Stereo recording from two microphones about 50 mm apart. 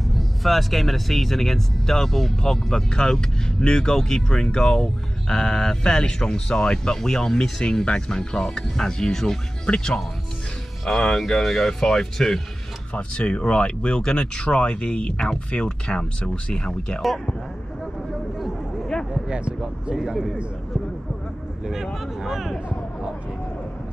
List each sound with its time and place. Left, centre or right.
0.1 s speech: centre
10.9 s speech: centre
12.9 s speech: left
19.2 s speech: centre
20.0 s speech: centre
21.9 s speech: centre